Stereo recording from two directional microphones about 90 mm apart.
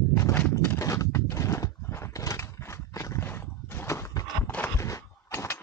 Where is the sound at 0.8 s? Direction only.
35° left (ahead or behind).